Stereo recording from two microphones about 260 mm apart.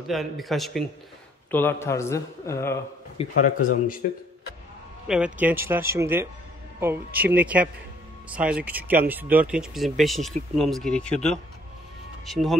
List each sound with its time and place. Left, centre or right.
0.0 s a man's voice: centre
3.2 s a man's voice: left
5.0 s speech: centre